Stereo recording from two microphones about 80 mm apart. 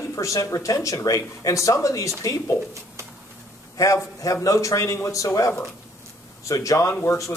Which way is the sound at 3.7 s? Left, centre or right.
Left.